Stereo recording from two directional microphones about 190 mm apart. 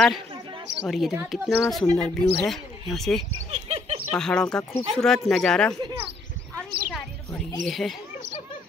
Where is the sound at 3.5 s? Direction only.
35° right (ahead or behind).